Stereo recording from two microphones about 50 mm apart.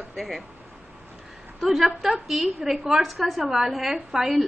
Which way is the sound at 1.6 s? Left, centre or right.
Centre.